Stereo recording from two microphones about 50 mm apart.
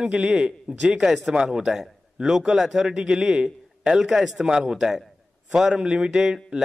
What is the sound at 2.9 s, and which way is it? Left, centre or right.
A man's voice, centre.